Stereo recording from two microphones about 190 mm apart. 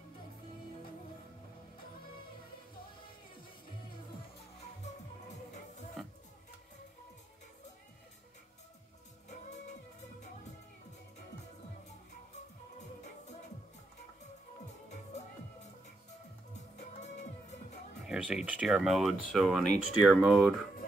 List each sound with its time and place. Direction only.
6.0 s music: centre (ahead or behind)
16.7 s music: 35° left (ahead or behind)
18.0 s speech: 5° right (ahead or behind)